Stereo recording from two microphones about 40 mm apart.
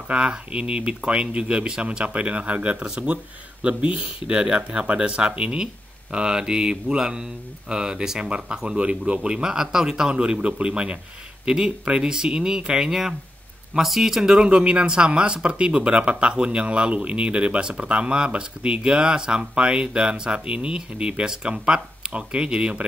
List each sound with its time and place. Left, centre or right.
0.1 s speech: right
13.7 s speech: centre
14.4 s speech: right